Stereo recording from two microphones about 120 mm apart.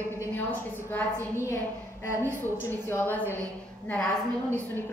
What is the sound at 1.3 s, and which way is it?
Speech, 25° left (ahead or behind).